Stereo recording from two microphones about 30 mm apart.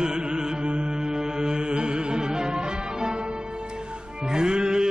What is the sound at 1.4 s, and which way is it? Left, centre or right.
Music, right.